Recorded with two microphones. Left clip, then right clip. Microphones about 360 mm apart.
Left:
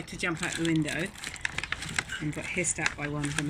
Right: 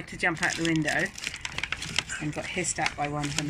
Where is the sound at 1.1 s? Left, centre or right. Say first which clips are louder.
Even; centre.